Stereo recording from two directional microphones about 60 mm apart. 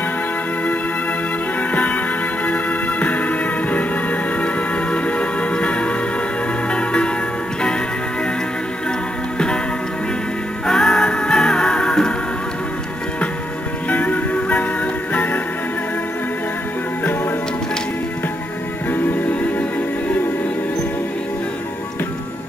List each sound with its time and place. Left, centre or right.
1.7 s music: left
10.7 s music: centre
13.8 s music: left
18.9 s music: left